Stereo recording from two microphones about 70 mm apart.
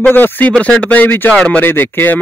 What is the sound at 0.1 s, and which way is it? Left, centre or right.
Speech, left.